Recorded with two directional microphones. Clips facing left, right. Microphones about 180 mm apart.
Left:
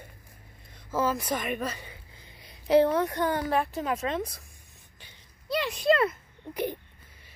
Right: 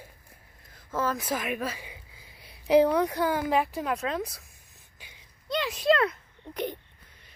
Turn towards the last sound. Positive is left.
turn(degrees=5)  # may be behind; listen again after turning